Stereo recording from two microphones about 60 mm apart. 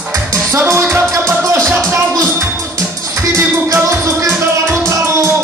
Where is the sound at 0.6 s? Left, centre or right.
Right.